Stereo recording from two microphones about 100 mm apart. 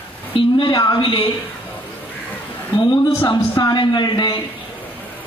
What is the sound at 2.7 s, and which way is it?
A man's voice, 50° left (ahead or behind).